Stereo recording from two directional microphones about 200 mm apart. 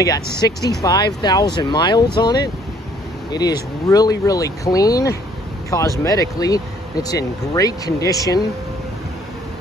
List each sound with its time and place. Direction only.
0.4 s speech: 20° left (ahead or behind)